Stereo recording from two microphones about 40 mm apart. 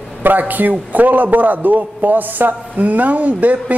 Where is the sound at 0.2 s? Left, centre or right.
Right.